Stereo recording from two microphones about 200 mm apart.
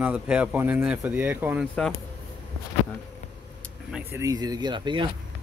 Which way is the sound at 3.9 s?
15° right (ahead or behind).